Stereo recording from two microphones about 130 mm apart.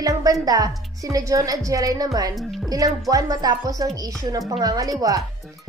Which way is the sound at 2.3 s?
Centre (ahead or behind).